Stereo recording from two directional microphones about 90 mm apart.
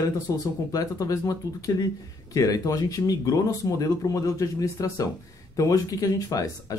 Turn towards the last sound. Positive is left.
turn(degrees=40)  # may be behind; listen again after turning